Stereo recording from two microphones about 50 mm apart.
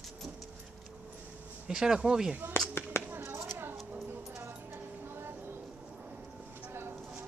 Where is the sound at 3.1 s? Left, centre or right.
Right.